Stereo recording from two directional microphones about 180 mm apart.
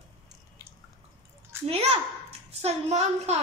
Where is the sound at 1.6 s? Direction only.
35° right (ahead or behind).